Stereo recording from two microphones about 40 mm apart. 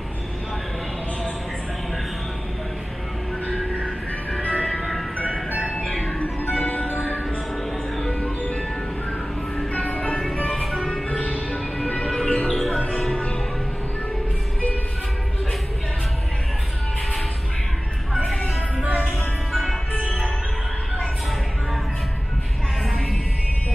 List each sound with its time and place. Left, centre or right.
3.8 s music: left
4.6 s music: centre
6.2 s music: left
8.1 s music: left
9.7 s music: left
10.5 s music: centre
11.1 s music: left
11.8 s music: left
13.1 s music: left
19.5 s music: centre